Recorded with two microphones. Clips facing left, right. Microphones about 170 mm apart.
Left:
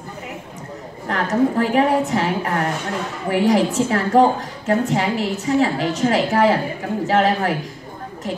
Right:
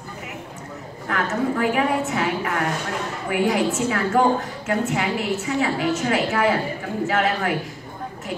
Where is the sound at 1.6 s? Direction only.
35° left (ahead or behind).